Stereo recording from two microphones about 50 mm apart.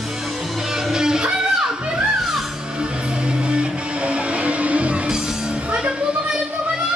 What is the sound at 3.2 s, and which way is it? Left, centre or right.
Music, centre.